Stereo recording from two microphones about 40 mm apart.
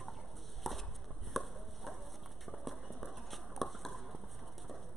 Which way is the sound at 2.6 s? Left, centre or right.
Centre.